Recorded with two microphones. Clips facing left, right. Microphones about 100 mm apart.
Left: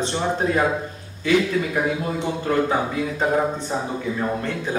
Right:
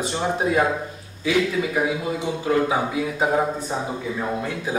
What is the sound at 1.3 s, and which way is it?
A man's voice, 5° right (ahead or behind).